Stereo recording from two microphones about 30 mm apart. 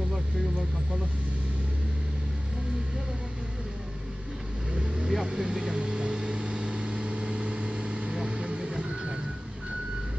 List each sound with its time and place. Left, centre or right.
4.7 s vehicle: right
5.5 s speech: centre
5.8 s a sound: right
6.5 s vehicle: right